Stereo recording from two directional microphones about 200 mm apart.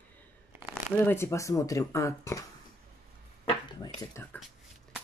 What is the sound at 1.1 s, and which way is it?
Speech, 15° left (ahead or behind).